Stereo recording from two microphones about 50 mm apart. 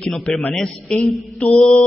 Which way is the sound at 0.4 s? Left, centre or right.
Centre.